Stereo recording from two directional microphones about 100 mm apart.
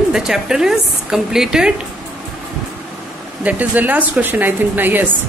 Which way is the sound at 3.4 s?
15° right (ahead or behind).